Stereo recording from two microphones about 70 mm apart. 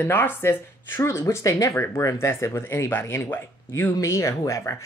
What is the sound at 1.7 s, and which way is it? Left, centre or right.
Speech, left.